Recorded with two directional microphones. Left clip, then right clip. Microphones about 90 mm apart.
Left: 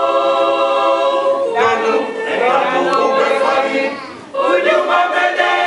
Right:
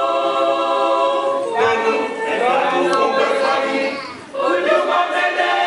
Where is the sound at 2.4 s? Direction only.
30° left (ahead or behind).